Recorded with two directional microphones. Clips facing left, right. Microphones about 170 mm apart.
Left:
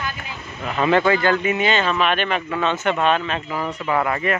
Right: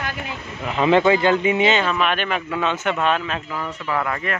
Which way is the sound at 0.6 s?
15° right (ahead or behind).